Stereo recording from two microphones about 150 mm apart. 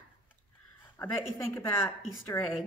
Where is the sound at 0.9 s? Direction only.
15° left (ahead or behind).